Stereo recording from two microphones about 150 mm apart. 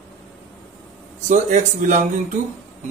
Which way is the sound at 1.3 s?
55° right (ahead or behind).